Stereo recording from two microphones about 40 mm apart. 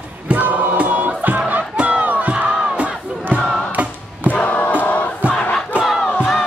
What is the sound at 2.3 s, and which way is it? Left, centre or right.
Crowd, right.